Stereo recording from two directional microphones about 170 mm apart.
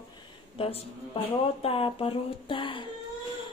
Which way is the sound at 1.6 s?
35° left (ahead or behind).